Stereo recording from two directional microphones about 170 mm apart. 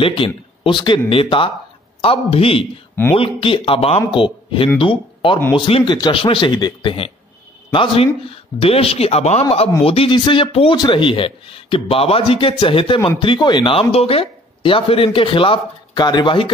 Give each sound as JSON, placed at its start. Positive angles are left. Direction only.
{"t": 0.0, "sound": "speech", "side_deg": 30}